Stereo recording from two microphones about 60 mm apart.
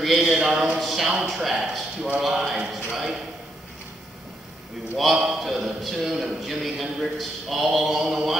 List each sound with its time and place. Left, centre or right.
0.0 s a man's voice: centre
2.9 s a sound: centre
4.9 s a man's voice: centre